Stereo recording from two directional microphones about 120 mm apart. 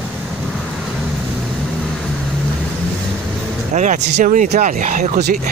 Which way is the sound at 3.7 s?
85° right.